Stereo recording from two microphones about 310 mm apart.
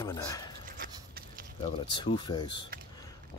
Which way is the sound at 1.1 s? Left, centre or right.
Right.